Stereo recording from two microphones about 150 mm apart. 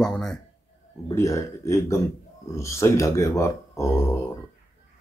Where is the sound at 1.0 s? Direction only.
20° left (ahead or behind).